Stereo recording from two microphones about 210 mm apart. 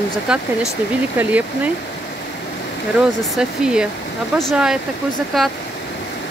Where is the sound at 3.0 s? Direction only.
5° right (ahead or behind).